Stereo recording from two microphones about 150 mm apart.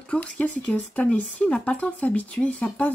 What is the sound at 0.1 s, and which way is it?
Speech, 5° left (ahead or behind).